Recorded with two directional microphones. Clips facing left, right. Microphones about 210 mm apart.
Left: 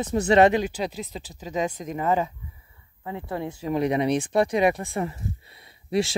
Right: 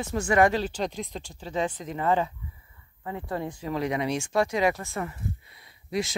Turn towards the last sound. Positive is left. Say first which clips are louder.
# left 5 dB
turn(degrees=25)  # may be behind; listen again after turning